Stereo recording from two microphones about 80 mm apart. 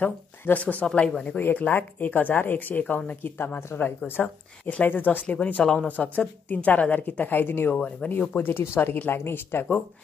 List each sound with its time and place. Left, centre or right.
0.0 s speech: centre